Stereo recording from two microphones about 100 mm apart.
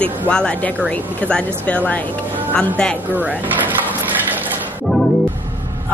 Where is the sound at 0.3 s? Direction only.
10° left (ahead or behind).